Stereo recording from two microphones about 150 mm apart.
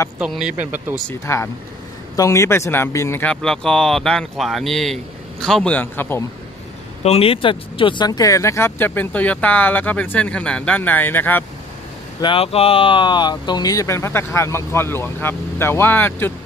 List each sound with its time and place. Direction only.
0.2 s speech: 5° right (ahead or behind)
0.9 s speech: 20° left (ahead or behind)
7.0 s speech: 40° left (ahead or behind); by 11.4 s 15° left (ahead or behind)
12.2 s speech: 35° left (ahead or behind); by 16.3 s 15° left (ahead or behind)